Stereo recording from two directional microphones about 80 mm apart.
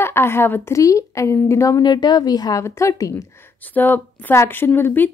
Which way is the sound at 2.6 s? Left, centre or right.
Left.